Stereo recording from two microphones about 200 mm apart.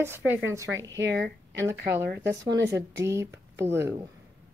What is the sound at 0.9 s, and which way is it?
Speech, 60° right (ahead or behind).